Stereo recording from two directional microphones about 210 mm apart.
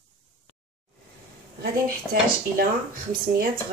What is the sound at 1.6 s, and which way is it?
Speech, 45° right (ahead or behind).